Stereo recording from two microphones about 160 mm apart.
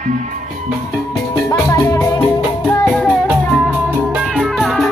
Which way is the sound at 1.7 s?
20° left (ahead or behind).